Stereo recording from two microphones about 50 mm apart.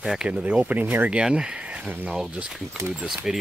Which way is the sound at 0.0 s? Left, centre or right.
Centre.